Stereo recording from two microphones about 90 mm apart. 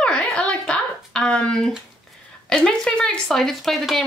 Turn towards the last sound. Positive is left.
turn(degrees=0)  # may be behind; listen again after turning